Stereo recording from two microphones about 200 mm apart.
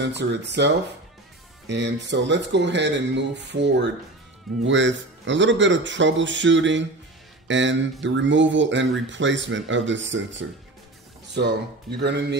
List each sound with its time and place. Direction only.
0.0 s speech: 60° right (ahead or behind)
12.0 s speech: 60° right (ahead or behind)